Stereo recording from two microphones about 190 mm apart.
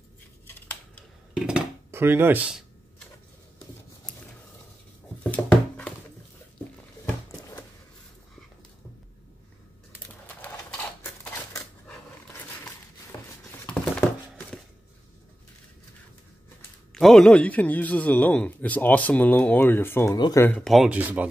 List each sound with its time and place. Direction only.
0.5 s scissors: 10° left (ahead or behind)
1.3 s dishes: 5° right (ahead or behind)
5.3 s a sound: 10° left (ahead or behind)
9.9 s typewriter: 10° left (ahead or behind)
13.1 s a sound: 20° left (ahead or behind)
16.9 s a man's voice: centre (ahead or behind); by 20.4 s 20° left (ahead or behind)
20.4 s speech: 5° left (ahead or behind)